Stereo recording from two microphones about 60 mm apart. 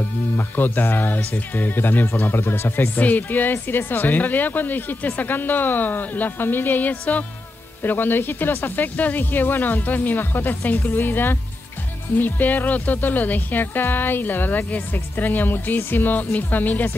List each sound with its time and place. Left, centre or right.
0.4 s speech: left
3.0 s speech: left